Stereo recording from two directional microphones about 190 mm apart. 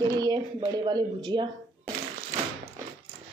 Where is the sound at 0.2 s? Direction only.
20° right (ahead or behind).